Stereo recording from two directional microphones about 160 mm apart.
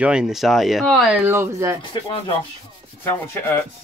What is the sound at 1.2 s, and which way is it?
Speech, 15° right (ahead or behind).